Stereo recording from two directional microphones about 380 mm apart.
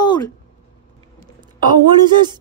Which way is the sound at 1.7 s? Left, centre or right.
Centre.